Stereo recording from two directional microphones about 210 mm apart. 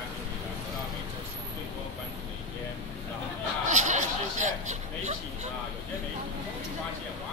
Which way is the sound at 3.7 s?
35° right (ahead or behind).